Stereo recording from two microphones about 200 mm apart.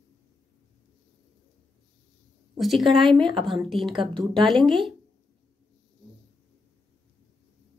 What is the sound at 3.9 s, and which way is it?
Speech, 25° right (ahead or behind).